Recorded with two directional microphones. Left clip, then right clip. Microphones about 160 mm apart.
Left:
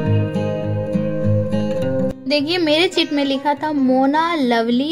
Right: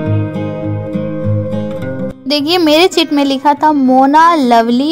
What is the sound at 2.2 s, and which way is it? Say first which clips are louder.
A woman's voice: right 8 dB; 55° right (ahead or behind).